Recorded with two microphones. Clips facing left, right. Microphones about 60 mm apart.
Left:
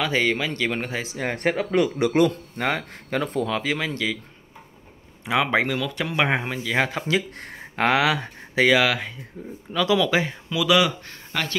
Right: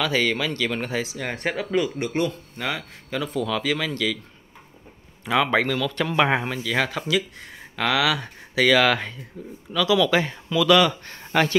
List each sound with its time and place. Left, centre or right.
0.0 s speech: left
1.0 s speech: left
2.0 s speech: left
3.4 s speech: left
5.2 s speech: centre
6.5 s speech: centre
7.3 s speech: left
8.7 s speech: centre
9.7 s speech: left
10.0 s speech: centre